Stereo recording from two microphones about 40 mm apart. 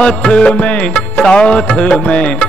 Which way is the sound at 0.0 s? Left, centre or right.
Left.